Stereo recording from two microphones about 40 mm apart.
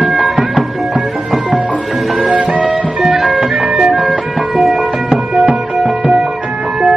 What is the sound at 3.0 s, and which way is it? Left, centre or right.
Music, centre.